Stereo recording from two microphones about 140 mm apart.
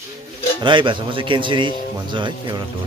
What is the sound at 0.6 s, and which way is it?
Speech, 35° right (ahead or behind).